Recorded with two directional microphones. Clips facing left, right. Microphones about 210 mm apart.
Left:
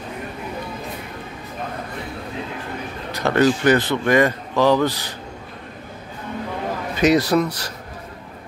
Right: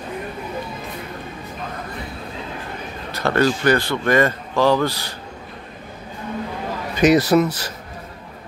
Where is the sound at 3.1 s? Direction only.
15° left (ahead or behind).